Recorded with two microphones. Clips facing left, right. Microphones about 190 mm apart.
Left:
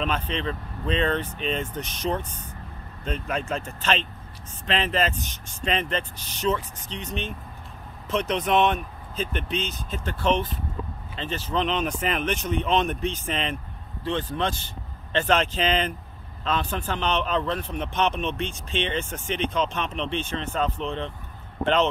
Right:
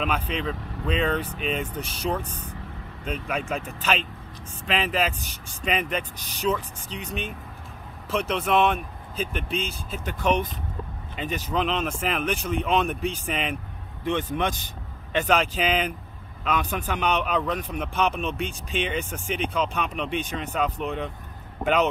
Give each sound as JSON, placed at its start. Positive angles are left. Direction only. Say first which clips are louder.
{"t": 0.0, "sound": "a man's voice", "louder": "even", "side_deg": -5}
{"t": 8.1, "sound": "a man's voice", "louder": "even", "side_deg": -5}
{"t": 11.6, "sound": "a man's voice", "louder": "left 1 dB", "side_deg": 0}